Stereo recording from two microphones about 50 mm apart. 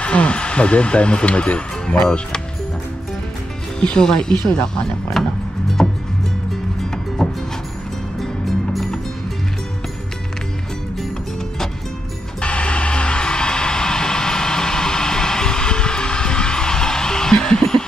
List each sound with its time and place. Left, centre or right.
0.0 s speech: left
3.8 s speech: centre
5.2 s music: centre
7.2 s music: centre
12.4 s music: left